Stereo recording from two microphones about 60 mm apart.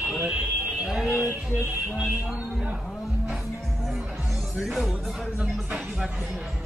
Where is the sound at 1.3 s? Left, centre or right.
Right.